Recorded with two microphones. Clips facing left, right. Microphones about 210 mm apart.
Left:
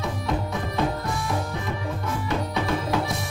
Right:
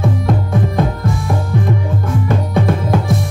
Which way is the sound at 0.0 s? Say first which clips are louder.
Right 9 dB; 50° right (ahead or behind).